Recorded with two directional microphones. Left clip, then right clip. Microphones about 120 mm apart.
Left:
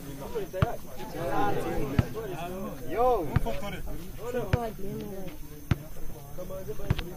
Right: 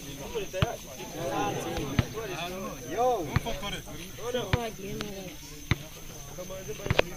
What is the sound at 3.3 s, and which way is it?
Speech, 45° left (ahead or behind).